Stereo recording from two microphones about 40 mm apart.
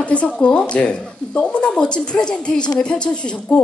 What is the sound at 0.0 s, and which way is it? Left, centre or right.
A woman's voice, left.